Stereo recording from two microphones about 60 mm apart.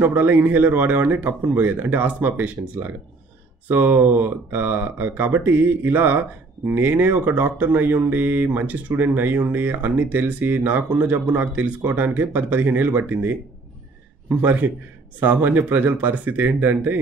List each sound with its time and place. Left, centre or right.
0.0 s speech: right